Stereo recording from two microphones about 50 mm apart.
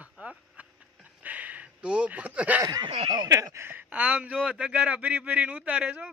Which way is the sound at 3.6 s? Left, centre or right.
Right.